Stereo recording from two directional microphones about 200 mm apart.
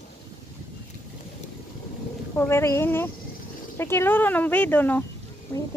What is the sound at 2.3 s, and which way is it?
Speech, 10° left (ahead or behind).